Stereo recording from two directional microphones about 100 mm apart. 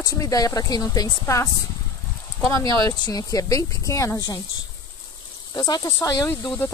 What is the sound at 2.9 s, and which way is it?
Speech, 35° left (ahead or behind).